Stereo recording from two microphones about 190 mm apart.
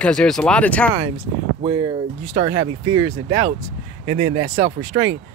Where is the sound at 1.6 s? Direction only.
20° right (ahead or behind).